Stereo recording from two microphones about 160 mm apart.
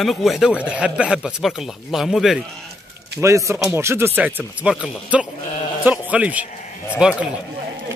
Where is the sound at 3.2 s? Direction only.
20° right (ahead or behind).